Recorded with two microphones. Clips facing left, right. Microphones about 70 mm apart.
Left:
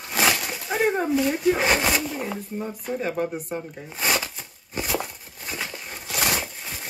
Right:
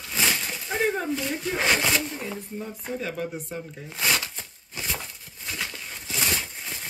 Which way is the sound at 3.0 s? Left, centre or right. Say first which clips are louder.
Left 7 dB; left.